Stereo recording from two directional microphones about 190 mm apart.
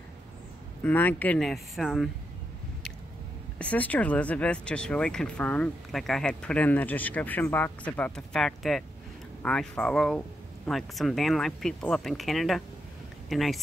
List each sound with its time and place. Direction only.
0.8 s speech: 10° left (ahead or behind)
3.5 s speech: 10° left (ahead or behind)